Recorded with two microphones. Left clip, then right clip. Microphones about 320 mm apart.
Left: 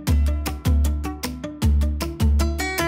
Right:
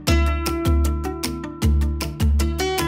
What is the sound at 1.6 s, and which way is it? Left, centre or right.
Music, centre.